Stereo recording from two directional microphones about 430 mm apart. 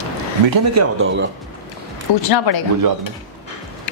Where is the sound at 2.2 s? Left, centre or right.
Left.